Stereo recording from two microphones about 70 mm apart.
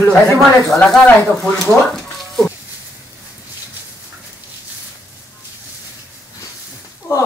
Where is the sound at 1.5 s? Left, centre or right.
Centre.